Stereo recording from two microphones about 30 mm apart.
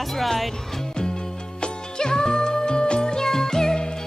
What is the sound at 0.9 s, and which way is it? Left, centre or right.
Music, left.